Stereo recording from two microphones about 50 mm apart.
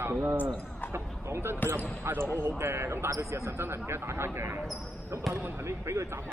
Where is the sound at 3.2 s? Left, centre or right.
Right.